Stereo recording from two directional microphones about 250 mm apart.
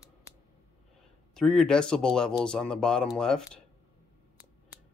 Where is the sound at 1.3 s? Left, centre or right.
Centre.